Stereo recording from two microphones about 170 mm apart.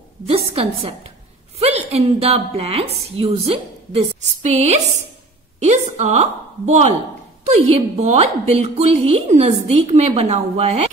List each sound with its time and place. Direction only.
0.3 s a woman's voice: 35° right (ahead or behind)